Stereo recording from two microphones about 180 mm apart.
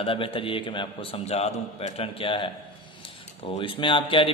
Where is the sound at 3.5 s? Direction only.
30° left (ahead or behind).